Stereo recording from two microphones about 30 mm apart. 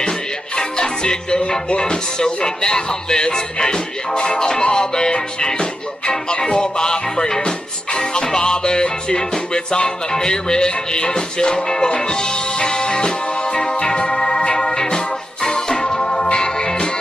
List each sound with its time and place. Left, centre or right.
0.6 s music: left